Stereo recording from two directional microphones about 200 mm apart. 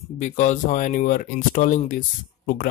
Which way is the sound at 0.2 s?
40° left (ahead or behind).